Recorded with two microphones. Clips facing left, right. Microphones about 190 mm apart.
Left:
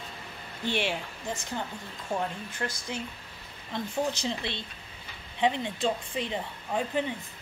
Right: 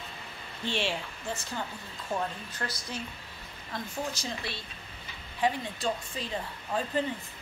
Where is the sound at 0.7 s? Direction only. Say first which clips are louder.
Left 2 dB; 15° left (ahead or behind).